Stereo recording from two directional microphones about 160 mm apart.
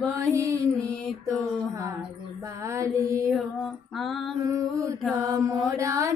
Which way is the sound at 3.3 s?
Centre (ahead or behind).